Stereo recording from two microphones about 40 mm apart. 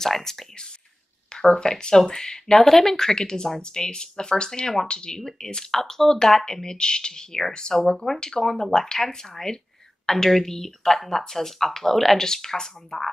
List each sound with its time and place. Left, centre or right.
0.0 s speech: centre